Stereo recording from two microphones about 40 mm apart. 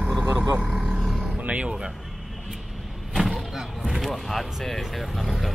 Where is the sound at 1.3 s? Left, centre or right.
Right.